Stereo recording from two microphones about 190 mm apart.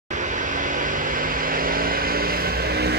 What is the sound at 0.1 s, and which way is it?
Vehicle, 40° right (ahead or behind).